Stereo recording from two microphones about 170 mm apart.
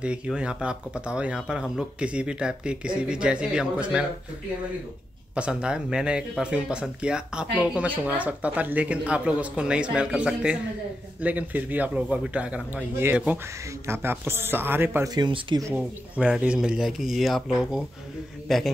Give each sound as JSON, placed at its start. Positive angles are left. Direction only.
{"t": 0.0, "sound": "speech", "side_deg": -5}
{"t": 5.3, "sound": "speech", "side_deg": -5}
{"t": 15.1, "sound": "speech", "side_deg": -25}
{"t": 15.7, "sound": "speech", "side_deg": -5}